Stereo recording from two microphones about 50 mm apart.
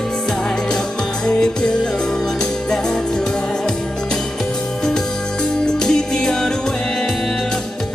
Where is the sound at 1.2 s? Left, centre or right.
Centre.